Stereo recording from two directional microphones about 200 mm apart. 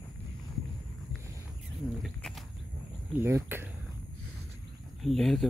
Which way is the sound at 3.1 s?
10° right (ahead or behind).